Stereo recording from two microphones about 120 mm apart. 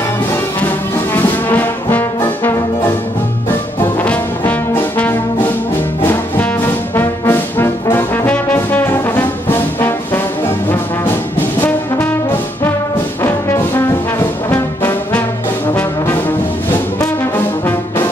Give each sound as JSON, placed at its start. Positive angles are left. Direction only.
{"t": 1.1, "sound": "brass instrument", "side_deg": 15}
{"t": 4.0, "sound": "brass instrument", "side_deg": 10}
{"t": 7.0, "sound": "brass instrument", "side_deg": 20}
{"t": 11.3, "sound": "brass instrument", "side_deg": 15}